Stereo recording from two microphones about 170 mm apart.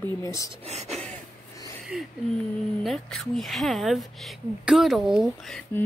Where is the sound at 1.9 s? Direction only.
5° right (ahead or behind).